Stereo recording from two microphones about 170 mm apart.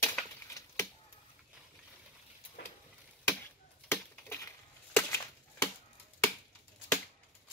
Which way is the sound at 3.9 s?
15° left (ahead or behind).